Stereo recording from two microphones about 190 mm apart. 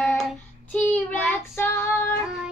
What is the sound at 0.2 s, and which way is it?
Child singing, 5° left (ahead or behind).